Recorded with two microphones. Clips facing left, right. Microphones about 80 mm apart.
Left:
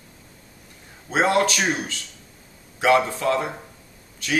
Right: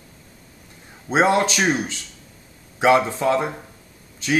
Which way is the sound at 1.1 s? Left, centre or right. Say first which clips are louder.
Right 2 dB; right.